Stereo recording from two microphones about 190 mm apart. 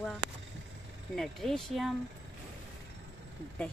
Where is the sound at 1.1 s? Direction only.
Centre (ahead or behind).